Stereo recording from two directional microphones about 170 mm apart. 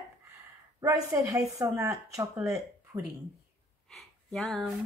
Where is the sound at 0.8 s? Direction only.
20° right (ahead or behind).